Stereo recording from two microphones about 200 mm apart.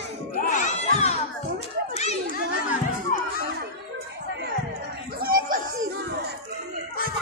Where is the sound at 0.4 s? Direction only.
40° left (ahead or behind).